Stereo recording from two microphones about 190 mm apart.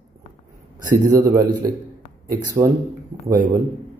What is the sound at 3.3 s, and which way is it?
Speech, 40° right (ahead or behind).